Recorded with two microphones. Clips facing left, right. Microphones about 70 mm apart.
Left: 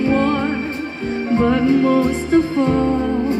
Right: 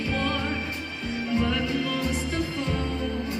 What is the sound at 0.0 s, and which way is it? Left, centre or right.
Music, left.